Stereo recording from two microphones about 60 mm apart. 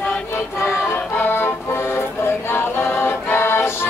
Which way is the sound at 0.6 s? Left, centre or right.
Left.